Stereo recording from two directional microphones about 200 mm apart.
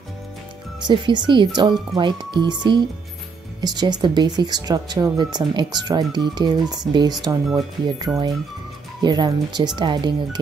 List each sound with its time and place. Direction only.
0.8 s speech: 20° right (ahead or behind)